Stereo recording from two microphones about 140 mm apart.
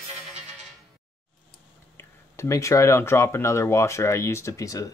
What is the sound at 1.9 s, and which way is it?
Speech, 20° left (ahead or behind).